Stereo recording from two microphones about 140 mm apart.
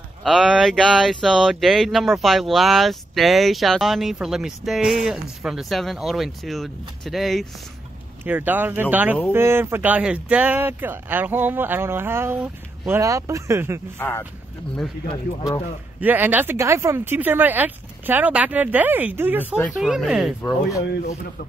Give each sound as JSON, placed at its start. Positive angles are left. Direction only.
{"t": 0.2, "sound": "speech", "side_deg": 0}
{"t": 8.3, "sound": "speech", "side_deg": -10}
{"t": 13.9, "sound": "speech", "side_deg": 15}
{"t": 16.0, "sound": "speech", "side_deg": -15}
{"t": 19.6, "sound": "speech", "side_deg": -5}